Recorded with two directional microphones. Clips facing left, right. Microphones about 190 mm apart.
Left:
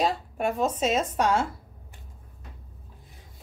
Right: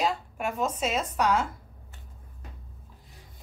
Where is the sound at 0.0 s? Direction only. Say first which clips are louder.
Left 3 dB; 30° left (ahead or behind).